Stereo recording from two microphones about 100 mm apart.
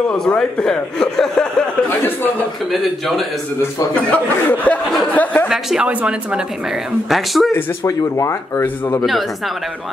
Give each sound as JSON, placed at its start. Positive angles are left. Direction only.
{"t": 0.1, "sound": "speech", "side_deg": 10}
{"t": 4.1, "sound": "speech", "side_deg": 15}
{"t": 5.5, "sound": "speech", "side_deg": -5}
{"t": 7.5, "sound": "a man's voice", "side_deg": 25}